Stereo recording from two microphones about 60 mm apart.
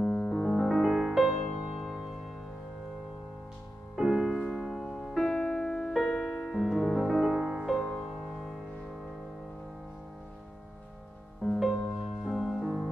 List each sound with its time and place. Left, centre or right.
0.0 s piano: centre
1.8 s music: centre
3.9 s music: centre
11.6 s music: centre